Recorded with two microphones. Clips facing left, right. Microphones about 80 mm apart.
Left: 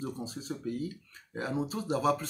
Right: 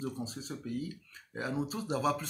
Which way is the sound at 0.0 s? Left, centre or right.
Centre.